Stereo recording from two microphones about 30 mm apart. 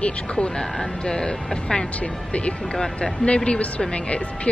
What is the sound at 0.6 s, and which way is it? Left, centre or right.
Speech, left.